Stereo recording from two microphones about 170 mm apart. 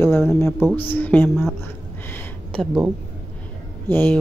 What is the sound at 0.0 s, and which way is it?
Speech, 15° left (ahead or behind).